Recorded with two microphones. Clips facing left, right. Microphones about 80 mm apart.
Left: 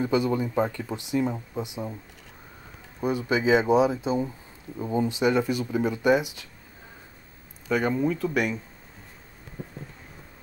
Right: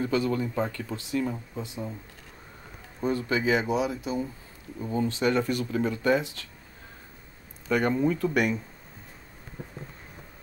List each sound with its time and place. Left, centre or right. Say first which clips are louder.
0.0 s speech: left 2 dB; centre
3.0 s speech: left 2 dB; centre
7.7 s speech: even; centre